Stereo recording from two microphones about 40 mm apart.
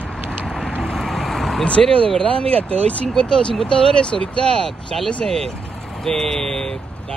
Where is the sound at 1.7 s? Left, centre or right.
Left.